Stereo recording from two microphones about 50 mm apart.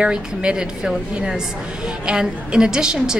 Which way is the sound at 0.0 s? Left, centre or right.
Centre.